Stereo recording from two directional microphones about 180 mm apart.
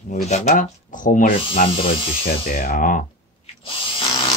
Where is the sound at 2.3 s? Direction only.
55° left (ahead or behind).